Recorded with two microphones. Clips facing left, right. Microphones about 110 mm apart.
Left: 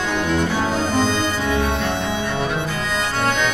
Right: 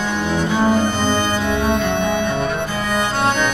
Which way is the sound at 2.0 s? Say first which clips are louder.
Right 4 dB; 55° right (ahead or behind).